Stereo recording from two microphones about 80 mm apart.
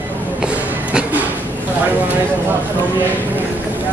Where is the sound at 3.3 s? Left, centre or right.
Right.